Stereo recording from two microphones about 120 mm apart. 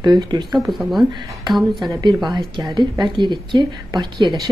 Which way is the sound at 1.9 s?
40° right (ahead or behind).